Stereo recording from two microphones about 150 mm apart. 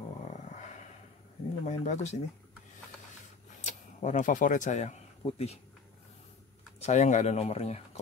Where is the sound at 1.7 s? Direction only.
50° left (ahead or behind).